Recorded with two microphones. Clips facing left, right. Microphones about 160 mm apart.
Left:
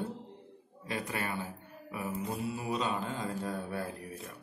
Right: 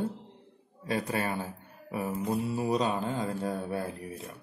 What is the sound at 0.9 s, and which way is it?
Speech, 35° right (ahead or behind).